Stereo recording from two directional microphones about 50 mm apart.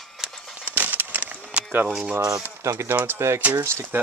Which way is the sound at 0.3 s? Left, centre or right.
Centre.